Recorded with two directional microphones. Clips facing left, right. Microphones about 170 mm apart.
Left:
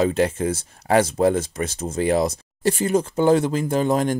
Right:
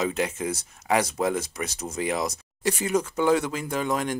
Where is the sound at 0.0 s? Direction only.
30° left (ahead or behind).